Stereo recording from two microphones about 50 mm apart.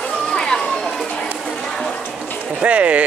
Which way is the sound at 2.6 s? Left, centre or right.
Right.